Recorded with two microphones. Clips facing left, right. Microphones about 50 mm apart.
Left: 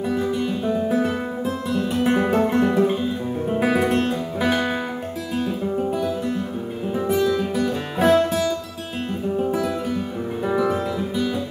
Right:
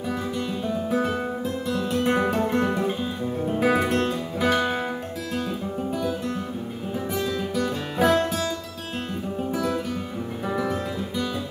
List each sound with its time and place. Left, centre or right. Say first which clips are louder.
0.4 s music: left 5 dB; centre
0.8 s music: left 3 dB; centre
2.2 s music: left 4 dB; left
2.5 s music: left 5 dB; centre
7.2 s music: left 4 dB; centre